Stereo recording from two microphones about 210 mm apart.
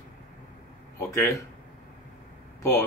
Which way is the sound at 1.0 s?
15° left (ahead or behind).